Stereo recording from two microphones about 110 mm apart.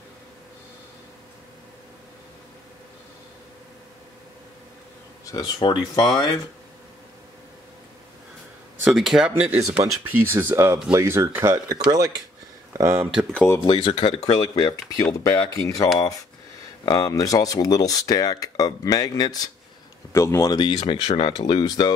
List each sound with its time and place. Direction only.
5.2 s speech: 35° left (ahead or behind)
8.8 s speech: centre (ahead or behind)
9.3 s speech: 15° right (ahead or behind)
13.7 s speech: 50° left (ahead or behind)
14.2 s speech: 35° left (ahead or behind)
20.5 s speech: 55° left (ahead or behind)
21.1 s speech: 45° left (ahead or behind)